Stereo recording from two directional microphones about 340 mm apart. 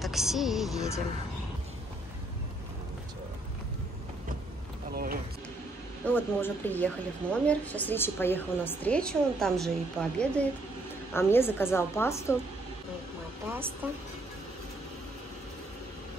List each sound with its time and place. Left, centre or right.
0.0 s a woman's voice: centre
4.9 s a sound: right
6.0 s a woman's voice: centre